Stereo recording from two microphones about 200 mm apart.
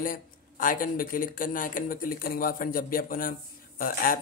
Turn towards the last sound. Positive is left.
turn(degrees=45)  # may be behind; listen again after turning